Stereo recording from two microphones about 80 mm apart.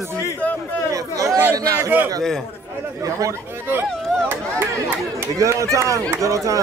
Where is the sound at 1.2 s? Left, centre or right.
Right.